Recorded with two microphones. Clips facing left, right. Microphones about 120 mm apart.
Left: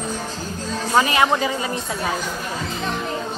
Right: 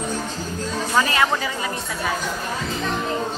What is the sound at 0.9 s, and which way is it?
Speech, 20° left (ahead or behind).